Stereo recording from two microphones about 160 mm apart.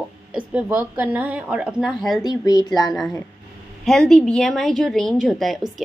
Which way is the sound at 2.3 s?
25° left (ahead or behind).